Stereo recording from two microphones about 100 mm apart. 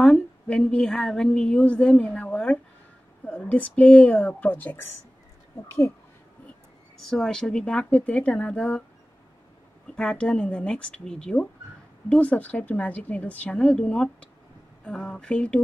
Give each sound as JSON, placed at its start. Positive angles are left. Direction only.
{"t": 0.0, "sound": "a woman's voice", "side_deg": 10}
{"t": 7.0, "sound": "a woman's voice", "side_deg": 5}
{"t": 9.8, "sound": "a woman's voice", "side_deg": 10}